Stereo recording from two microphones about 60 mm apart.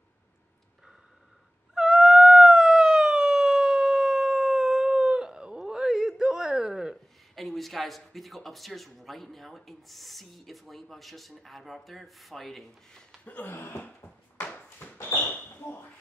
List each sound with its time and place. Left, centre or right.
1.8 s howl: centre
7.4 s speech: centre
13.4 s speech: left
14.4 s a sound: left